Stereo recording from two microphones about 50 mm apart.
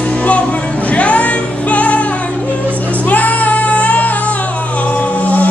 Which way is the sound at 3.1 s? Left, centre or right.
Left.